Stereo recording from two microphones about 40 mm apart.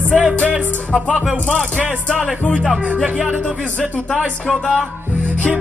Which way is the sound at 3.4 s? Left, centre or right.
Left.